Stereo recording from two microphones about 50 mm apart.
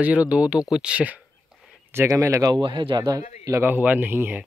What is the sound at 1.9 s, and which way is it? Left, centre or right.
Speech, right.